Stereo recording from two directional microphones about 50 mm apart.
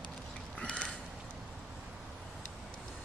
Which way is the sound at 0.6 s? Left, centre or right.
Centre.